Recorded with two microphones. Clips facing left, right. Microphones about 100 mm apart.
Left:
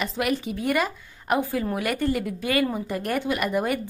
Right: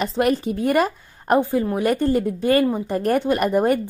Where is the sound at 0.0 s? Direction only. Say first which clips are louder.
Right 6 dB; 35° right (ahead or behind).